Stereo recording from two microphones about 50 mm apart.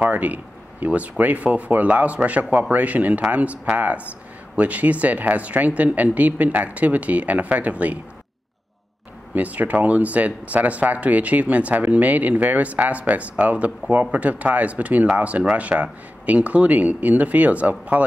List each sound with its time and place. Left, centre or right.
0.0 s speech: right
9.3 s speech: right